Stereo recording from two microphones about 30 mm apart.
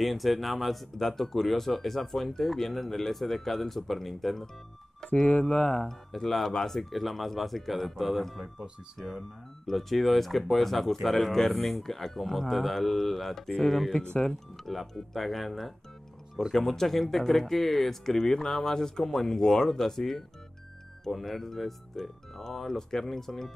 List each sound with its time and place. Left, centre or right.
0.0 s speech: centre
5.0 s speech: left
6.9 s speech: centre